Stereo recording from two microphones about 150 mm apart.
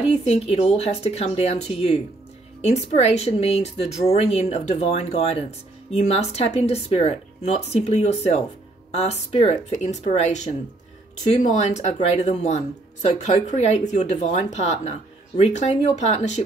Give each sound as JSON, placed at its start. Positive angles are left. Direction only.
{"t": 0.0, "sound": "speech", "side_deg": 45}